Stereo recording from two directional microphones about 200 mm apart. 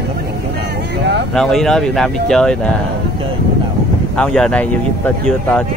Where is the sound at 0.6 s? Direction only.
55° right (ahead or behind).